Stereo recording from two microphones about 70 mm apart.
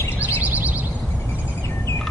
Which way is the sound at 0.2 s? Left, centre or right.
Right.